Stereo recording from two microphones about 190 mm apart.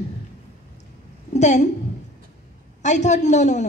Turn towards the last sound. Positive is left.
turn(degrees=40)  # may be behind; listen again after turning